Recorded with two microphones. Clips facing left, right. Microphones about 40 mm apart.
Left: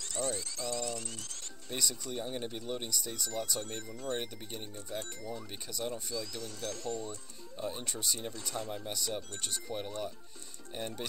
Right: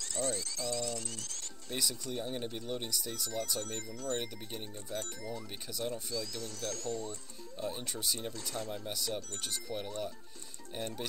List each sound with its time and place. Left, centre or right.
0.0 s speech: centre
1.7 s speech: centre
3.8 s speech: left
4.1 s speech: centre
4.9 s speech: centre
5.7 s speech: centre
6.1 s speech: centre
7.5 s speech: centre